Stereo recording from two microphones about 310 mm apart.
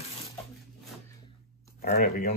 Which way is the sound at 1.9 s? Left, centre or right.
Left.